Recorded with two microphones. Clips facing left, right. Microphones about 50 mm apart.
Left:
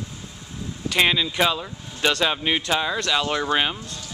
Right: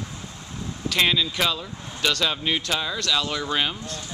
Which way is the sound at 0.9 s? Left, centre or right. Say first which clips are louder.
Left 2 dB; centre.